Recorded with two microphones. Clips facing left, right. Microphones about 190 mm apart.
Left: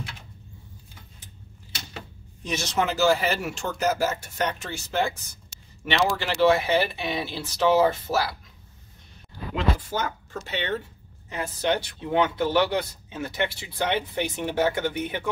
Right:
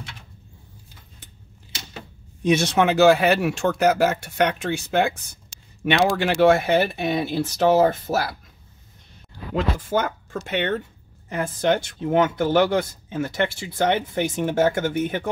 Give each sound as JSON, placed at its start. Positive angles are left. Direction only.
{"t": 2.4, "sound": "speech", "side_deg": -60}
{"t": 9.6, "sound": "speech", "side_deg": -50}